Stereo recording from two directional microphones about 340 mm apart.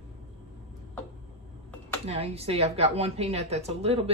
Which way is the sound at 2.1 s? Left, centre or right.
Centre.